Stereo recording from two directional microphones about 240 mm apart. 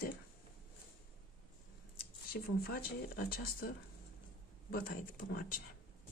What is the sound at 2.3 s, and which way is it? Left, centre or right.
Speech, left.